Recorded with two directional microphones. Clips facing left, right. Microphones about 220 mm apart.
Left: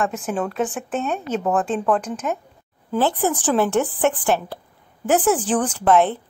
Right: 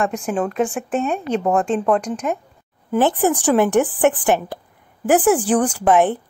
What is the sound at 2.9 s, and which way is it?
Speech, 15° right (ahead or behind).